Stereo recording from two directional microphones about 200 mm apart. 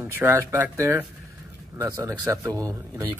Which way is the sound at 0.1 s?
10° right (ahead or behind).